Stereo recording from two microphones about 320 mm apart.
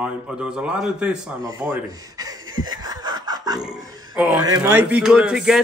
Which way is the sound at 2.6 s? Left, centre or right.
Centre.